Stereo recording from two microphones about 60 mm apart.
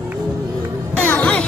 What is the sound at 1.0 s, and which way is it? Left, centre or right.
Music, left.